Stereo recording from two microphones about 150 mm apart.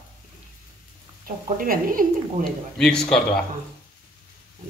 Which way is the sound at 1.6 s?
70° right (ahead or behind).